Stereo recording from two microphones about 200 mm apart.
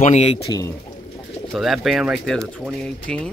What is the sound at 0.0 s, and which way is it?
Speech, 30° left (ahead or behind).